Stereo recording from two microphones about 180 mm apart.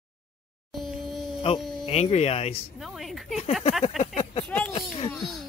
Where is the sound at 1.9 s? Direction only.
35° left (ahead or behind).